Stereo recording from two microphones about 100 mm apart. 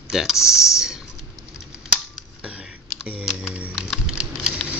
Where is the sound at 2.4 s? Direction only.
10° right (ahead or behind).